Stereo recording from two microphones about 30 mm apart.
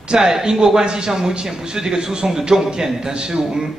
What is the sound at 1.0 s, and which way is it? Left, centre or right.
A man's voice, centre.